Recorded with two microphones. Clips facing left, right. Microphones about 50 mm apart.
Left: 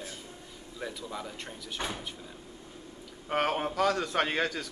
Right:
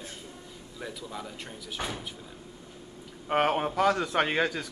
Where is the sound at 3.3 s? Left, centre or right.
Centre.